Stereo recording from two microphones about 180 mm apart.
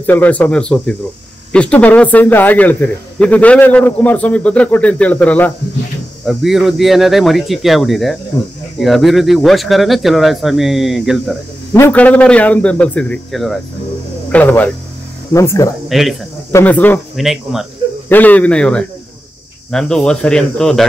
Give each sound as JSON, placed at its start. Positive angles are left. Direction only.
{"t": 0.0, "sound": "speech", "side_deg": 10}
{"t": 11.7, "sound": "speech", "side_deg": 10}
{"t": 15.9, "sound": "speech", "side_deg": 0}
{"t": 16.5, "sound": "speech", "side_deg": 10}
{"t": 17.2, "sound": "speech", "side_deg": 0}
{"t": 18.0, "sound": "speech", "side_deg": 10}